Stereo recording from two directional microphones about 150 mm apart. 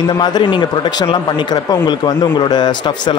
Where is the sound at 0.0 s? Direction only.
30° left (ahead or behind).